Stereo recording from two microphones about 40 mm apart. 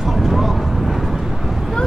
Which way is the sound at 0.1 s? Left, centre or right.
Centre.